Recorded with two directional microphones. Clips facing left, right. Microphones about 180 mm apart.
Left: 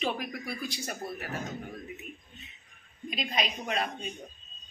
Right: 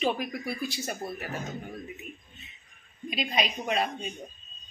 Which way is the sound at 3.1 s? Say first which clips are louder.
Right 3 dB; 5° right (ahead or behind).